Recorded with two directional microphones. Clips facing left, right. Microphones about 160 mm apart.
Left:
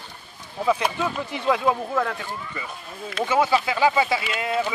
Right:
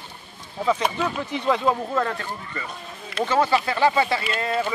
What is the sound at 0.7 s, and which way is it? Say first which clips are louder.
Speech: even; 10° left (ahead or behind).